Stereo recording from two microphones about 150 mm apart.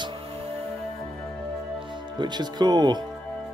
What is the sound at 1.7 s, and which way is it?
Speech, 35° right (ahead or behind).